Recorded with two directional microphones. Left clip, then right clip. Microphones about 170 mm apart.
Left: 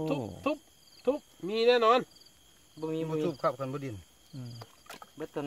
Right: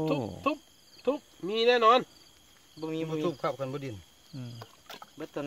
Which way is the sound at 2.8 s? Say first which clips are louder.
Even; 35° left (ahead or behind).